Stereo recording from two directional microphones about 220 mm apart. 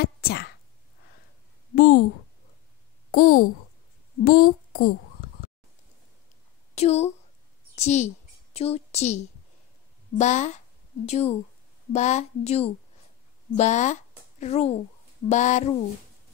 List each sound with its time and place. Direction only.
0.0 s a sound: 45° left (ahead or behind)
1.8 s a woman's voice: 40° left (ahead or behind)
3.1 s a child's voice: 40° left (ahead or behind)
6.7 s a woman's voice: 30° left (ahead or behind)